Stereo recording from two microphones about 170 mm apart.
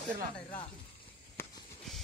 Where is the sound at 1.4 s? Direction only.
15° left (ahead or behind).